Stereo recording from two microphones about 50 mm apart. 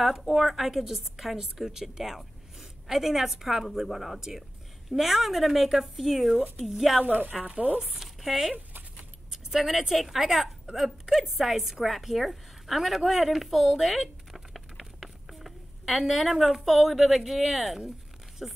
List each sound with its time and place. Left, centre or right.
0.0 s a woman's voice: centre
7.5 s speech: right
7.8 s a woman's voice: centre